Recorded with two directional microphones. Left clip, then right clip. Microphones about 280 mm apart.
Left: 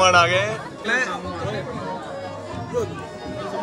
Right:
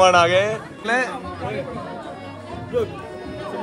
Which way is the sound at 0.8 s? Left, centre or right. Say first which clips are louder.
Right 1 dB; centre.